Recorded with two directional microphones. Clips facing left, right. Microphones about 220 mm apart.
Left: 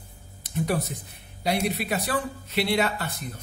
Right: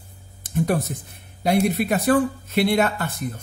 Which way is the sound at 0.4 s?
50° right (ahead or behind).